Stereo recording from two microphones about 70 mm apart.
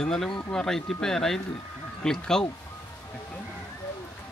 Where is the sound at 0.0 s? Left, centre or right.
Centre.